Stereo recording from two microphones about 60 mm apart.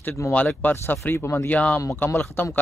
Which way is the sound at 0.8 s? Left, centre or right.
Left.